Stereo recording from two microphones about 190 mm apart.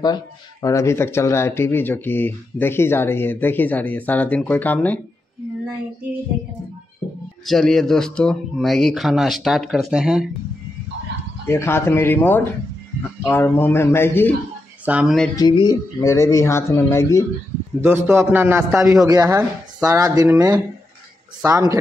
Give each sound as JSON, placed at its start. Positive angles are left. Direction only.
{"t": 0.0, "sound": "speech", "side_deg": 20}
{"t": 7.4, "sound": "speech", "side_deg": 0}
{"t": 11.4, "sound": "speech", "side_deg": 15}
{"t": 14.9, "sound": "speech", "side_deg": -5}
{"t": 15.3, "sound": "speech", "side_deg": 20}
{"t": 17.7, "sound": "speech", "side_deg": -10}